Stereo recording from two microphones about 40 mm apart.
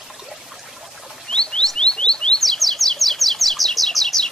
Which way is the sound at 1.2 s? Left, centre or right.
Left.